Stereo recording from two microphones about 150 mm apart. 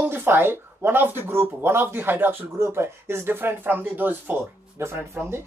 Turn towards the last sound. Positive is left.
turn(degrees=-15)  # may be behind; listen again after turning